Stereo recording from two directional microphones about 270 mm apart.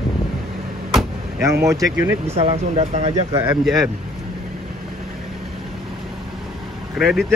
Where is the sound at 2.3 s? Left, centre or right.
Right.